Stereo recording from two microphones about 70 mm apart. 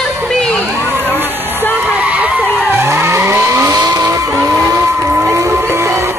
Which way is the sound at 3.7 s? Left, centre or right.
Right.